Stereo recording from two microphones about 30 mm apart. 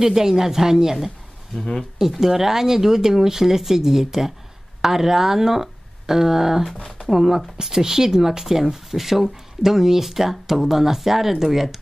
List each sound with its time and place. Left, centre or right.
0.0 s speech: centre
2.0 s speech: centre